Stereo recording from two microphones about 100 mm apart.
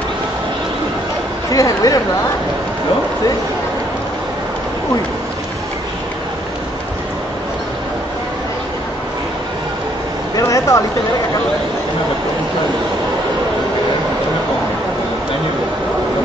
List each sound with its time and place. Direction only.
1.5 s speech: 35° left (ahead or behind)
10.3 s vehicle: 35° left (ahead or behind)